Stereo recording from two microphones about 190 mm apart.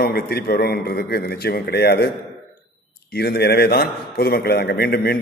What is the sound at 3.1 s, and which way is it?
A man's voice, 55° left (ahead or behind).